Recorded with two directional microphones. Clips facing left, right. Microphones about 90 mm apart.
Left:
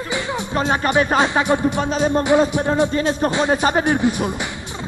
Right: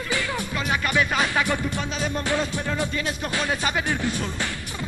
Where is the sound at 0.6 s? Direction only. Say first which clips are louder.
Left 7 dB; 30° left (ahead or behind).